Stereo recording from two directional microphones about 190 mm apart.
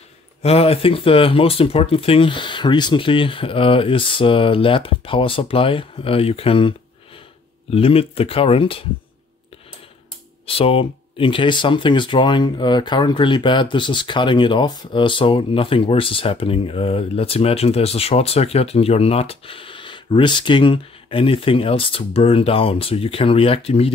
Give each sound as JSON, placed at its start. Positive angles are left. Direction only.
{"t": 0.4, "sound": "speech", "side_deg": 30}
{"t": 7.7, "sound": "speech", "side_deg": 30}
{"t": 10.4, "sound": "speech", "side_deg": 30}